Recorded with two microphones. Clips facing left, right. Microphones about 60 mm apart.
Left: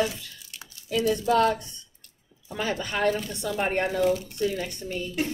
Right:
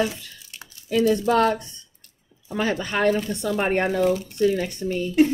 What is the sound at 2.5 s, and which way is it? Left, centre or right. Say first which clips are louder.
A woman's voice: right 5 dB; right.